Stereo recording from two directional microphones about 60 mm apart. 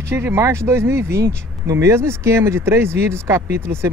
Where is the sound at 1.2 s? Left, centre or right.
Right.